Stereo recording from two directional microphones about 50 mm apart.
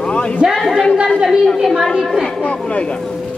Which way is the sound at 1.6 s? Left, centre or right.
Centre.